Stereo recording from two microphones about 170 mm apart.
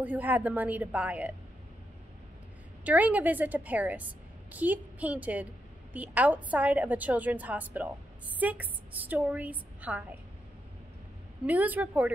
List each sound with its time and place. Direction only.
0.0 s a woman's voice: 10° right (ahead or behind)
2.8 s a woman's voice: 10° right (ahead or behind)
11.4 s a woman's voice: 10° right (ahead or behind)